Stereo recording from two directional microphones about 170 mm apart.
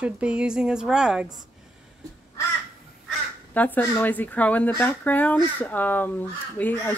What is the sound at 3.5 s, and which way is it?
Speech, 10° left (ahead or behind).